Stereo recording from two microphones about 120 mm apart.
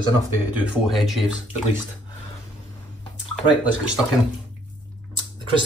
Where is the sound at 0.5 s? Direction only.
10° right (ahead or behind).